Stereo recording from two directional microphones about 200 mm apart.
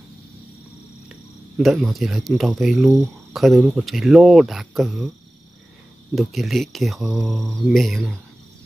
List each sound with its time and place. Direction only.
1.6 s speech: centre (ahead or behind)
6.1 s speech: centre (ahead or behind)